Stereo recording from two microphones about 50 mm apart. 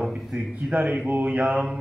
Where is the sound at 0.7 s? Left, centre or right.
Right.